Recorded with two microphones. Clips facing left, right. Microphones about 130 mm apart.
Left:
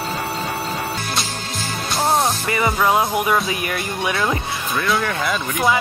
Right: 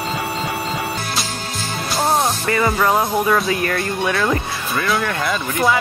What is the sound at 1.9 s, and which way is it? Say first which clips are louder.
Music: even; centre (ahead or behind).